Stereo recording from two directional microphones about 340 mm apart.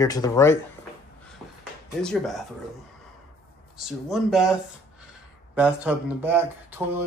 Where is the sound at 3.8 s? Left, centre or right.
Centre.